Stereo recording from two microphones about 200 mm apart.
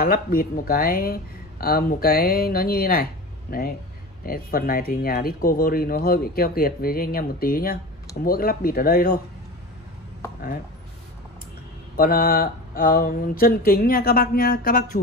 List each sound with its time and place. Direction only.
0.0 s speech: 45° left (ahead or behind)
12.0 s speech: 45° left (ahead or behind)